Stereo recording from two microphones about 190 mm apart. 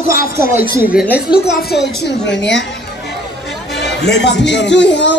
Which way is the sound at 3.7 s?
65° left (ahead or behind).